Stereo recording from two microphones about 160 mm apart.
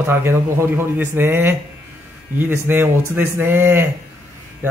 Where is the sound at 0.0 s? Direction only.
15° right (ahead or behind).